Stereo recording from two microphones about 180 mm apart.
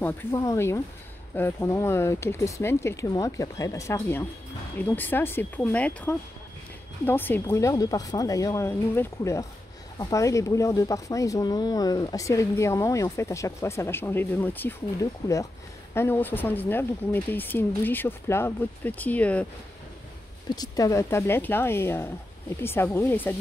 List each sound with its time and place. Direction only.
0.4 s speech: 15° left (ahead or behind)
20.5 s speech: 20° left (ahead or behind)